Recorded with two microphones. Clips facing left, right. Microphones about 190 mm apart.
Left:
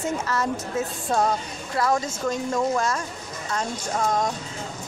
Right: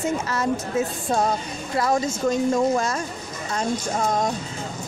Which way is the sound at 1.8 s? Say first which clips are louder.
Right 1 dB; 15° right (ahead or behind).